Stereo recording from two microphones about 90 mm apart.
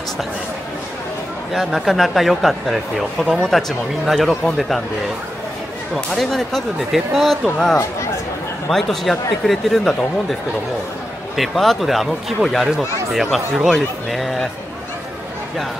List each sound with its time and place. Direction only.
1.5 s speech: centre (ahead or behind)
5.9 s speech: 5° left (ahead or behind)
8.6 s speech: 5° left (ahead or behind)
11.3 s speech: centre (ahead or behind)